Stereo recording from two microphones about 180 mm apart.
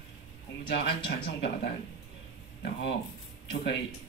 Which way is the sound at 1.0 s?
70° left (ahead or behind).